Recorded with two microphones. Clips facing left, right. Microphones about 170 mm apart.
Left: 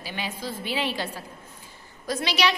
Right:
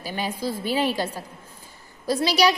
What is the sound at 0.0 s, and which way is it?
A woman's voice, 40° right (ahead or behind).